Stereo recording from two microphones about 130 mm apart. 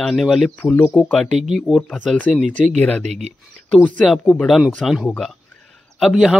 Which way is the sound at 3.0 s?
60° right (ahead or behind).